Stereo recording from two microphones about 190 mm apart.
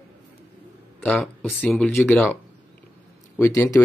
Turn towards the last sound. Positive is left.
turn(degrees=15)  # may be behind; listen again after turning